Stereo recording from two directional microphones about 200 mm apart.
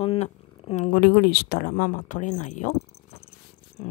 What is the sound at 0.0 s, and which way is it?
Speech, 30° left (ahead or behind).